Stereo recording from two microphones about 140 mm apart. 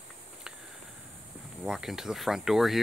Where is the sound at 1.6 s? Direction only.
5° right (ahead or behind).